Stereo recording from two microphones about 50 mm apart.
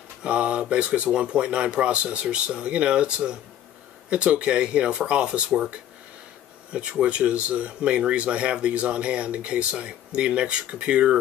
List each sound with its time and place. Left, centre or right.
0.2 s speech: right
6.7 s speech: right